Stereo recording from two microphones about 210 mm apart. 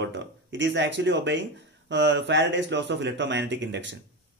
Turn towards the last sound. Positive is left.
turn(degrees=-55)  # may be behind; listen again after turning